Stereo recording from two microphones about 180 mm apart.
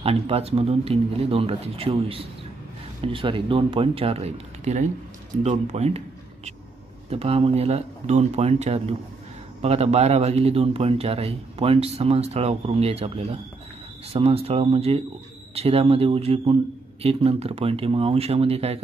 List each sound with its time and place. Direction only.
0.0 s a man's voice: 35° right (ahead or behind)